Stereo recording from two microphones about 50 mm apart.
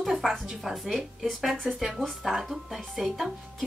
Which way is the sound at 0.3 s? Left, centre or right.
Centre.